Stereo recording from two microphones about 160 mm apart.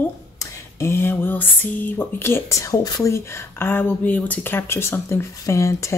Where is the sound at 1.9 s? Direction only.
15° left (ahead or behind).